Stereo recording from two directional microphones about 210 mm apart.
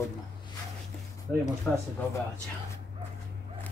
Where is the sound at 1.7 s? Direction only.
Centre (ahead or behind).